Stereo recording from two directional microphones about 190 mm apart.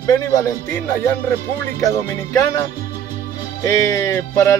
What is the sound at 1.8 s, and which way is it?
Speech, 15° left (ahead or behind).